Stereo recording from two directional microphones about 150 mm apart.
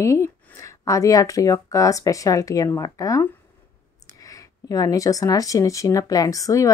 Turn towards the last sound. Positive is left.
turn(degrees=20)  # may be behind; listen again after turning